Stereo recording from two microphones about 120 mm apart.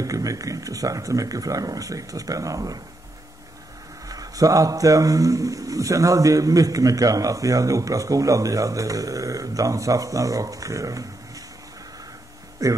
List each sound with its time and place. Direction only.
0.0 s speech: 30° right (ahead or behind)
4.1 s speech: 30° right (ahead or behind)
12.6 s speech: 30° right (ahead or behind)